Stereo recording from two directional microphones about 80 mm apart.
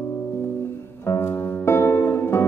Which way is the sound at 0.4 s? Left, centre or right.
Left.